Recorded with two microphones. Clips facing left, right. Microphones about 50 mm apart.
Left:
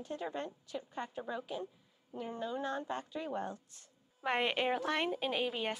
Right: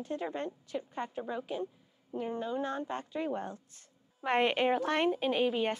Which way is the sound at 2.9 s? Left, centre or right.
Right.